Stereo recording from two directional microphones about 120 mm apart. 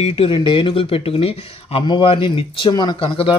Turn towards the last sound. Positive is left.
turn(degrees=45)  # may be behind; listen again after turning